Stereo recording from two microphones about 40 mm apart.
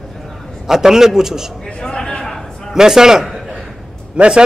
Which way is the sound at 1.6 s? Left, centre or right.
Left.